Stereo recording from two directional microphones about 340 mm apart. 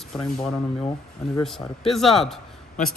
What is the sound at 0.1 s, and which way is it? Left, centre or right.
Speech, centre.